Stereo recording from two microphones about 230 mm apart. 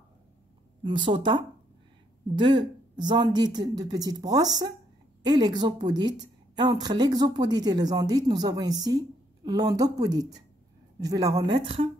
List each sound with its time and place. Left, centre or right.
0.8 s a woman's voice: right
11.0 s a woman's voice: centre